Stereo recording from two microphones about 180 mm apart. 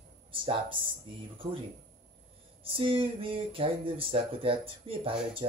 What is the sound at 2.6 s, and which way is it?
Speech, 30° right (ahead or behind).